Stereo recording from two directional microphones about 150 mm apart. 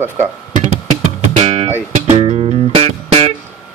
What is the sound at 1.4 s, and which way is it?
Music, 45° right (ahead or behind).